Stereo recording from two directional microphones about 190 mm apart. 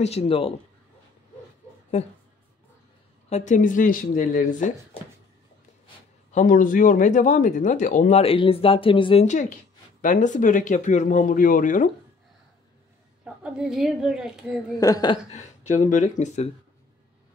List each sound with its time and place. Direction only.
0.0 s speech: 35° left (ahead or behind)
3.3 s speech: 40° left (ahead or behind)
6.3 s speech: 45° left (ahead or behind)
8.2 s speech: 30° left (ahead or behind)
13.2 s a woman's voice: 5° right (ahead or behind)
14.7 s speech: 20° left (ahead or behind)
15.3 s speech: 40° left (ahead or behind)